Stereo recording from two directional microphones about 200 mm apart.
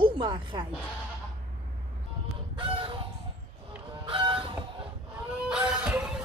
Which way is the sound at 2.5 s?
25° right (ahead or behind).